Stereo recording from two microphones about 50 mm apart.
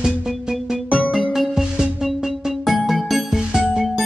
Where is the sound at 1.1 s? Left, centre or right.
Centre.